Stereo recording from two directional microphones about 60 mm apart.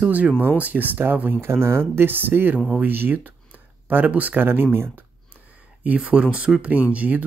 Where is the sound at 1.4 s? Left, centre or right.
Right.